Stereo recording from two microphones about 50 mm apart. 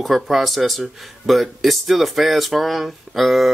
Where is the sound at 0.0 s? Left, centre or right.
Centre.